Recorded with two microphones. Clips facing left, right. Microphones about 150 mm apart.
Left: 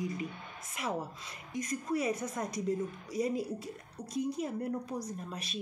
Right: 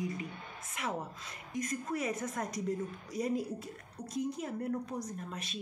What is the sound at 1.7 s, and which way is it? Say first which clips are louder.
Speech: left 4 dB; 35° left (ahead or behind).